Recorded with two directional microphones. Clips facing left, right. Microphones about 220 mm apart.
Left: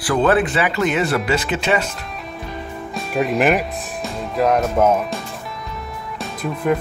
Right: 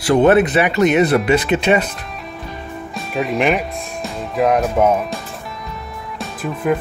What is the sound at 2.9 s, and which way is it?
Speech, centre (ahead or behind).